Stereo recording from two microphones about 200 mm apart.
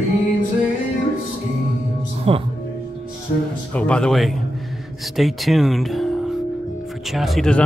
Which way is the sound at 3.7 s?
5° left (ahead or behind).